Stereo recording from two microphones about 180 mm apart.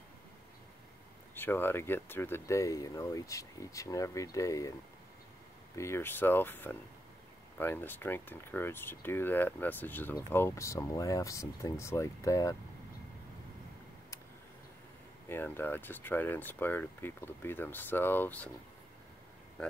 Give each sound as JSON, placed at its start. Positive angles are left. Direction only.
{"t": 1.3, "sound": "speech", "side_deg": 10}
{"t": 5.8, "sound": "speech", "side_deg": 15}
{"t": 15.2, "sound": "speech", "side_deg": 10}